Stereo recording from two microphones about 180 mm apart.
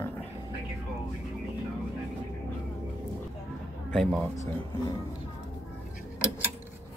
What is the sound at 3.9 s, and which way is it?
Speech, 5° left (ahead or behind).